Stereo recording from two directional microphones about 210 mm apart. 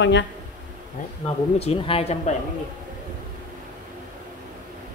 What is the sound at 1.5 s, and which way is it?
Speech, 30° left (ahead or behind).